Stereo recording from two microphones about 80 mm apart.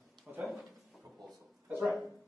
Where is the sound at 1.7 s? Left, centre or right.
Centre.